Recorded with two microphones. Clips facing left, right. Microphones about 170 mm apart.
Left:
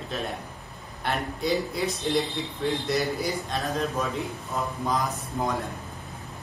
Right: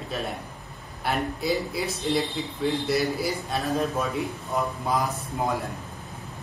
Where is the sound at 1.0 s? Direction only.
5° right (ahead or behind).